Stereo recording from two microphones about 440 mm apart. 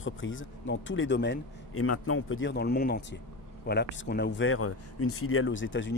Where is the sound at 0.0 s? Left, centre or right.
Left.